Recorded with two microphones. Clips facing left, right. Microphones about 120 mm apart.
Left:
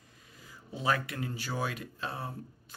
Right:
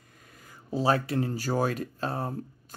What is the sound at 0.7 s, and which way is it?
Speech, 35° right (ahead or behind).